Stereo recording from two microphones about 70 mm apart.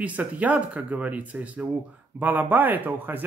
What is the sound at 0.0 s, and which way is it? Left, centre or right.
Speech, right.